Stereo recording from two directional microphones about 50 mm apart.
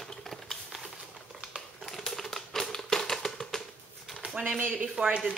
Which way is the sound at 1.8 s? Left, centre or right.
Centre.